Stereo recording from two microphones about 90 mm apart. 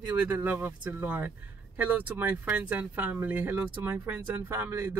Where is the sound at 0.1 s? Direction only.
20° right (ahead or behind).